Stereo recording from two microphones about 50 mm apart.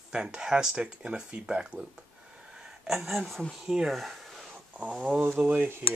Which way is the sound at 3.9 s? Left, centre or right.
Centre.